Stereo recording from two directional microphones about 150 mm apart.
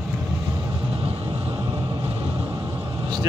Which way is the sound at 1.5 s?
25° right (ahead or behind).